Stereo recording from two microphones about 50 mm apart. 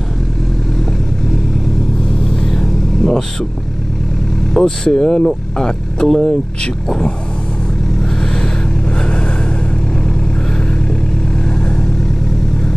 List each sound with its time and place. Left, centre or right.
2.4 s vehicle: centre
4.6 s speech: centre
8.9 s vehicle: centre
11.4 s vehicle: centre